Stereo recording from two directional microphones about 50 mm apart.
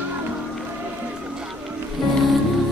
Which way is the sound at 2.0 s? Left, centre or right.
Centre.